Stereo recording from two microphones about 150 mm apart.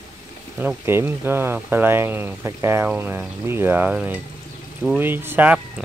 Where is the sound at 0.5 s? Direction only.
15° right (ahead or behind).